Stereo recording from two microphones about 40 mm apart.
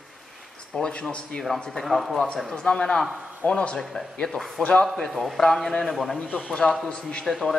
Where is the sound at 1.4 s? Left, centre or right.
Centre.